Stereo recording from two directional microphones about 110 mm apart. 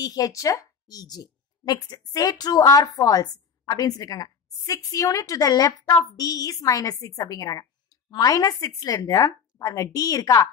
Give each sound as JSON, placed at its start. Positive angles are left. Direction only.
{"t": 0.0, "sound": "a woman's voice", "side_deg": 35}